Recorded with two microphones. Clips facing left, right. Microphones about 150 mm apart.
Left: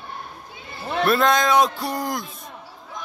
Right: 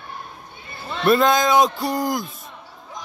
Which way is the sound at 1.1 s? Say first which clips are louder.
Right 3 dB; centre (ahead or behind).